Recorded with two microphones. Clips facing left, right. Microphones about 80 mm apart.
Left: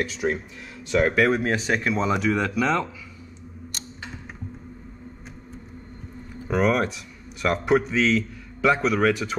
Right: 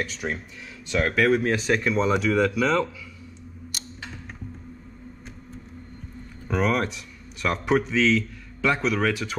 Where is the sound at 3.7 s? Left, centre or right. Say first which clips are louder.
Right 1 dB; centre.